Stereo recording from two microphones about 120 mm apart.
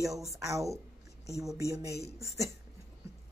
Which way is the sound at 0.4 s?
25° right (ahead or behind).